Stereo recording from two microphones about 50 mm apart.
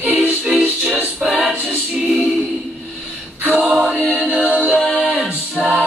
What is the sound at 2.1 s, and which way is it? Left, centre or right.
Music, centre.